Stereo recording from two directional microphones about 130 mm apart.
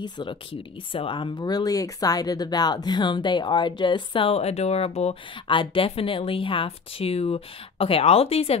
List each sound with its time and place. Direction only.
0.0 s speech: 40° left (ahead or behind)
5.5 s a woman's voice: 40° left (ahead or behind)